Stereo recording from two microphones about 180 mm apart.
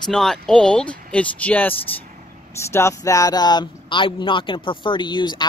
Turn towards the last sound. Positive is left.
turn(degrees=25)  # may be behind; listen again after turning